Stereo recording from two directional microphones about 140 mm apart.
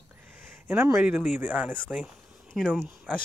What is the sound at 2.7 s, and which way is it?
Speech, 10° right (ahead or behind).